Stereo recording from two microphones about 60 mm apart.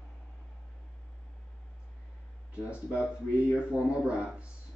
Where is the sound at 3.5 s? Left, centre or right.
Centre.